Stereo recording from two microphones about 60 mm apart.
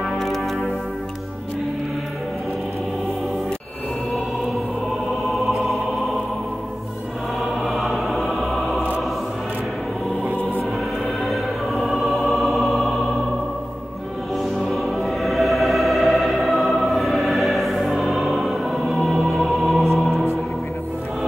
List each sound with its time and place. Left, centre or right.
0.0 s music: centre
5.3 s music: centre
7.6 s music: centre
10.2 s music: right
11.2 s music: centre
14.3 s music: centre